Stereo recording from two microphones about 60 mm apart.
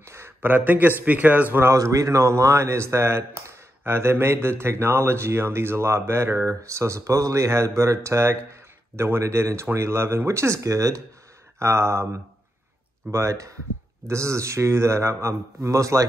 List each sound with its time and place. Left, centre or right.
0.4 s speech: right
1.8 s speech: right
11.6 s speech: right